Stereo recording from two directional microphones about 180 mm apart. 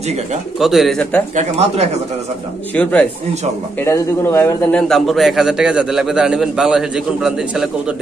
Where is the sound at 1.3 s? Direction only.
40° right (ahead or behind).